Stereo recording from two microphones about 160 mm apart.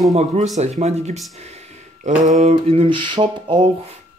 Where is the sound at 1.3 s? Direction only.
45° right (ahead or behind).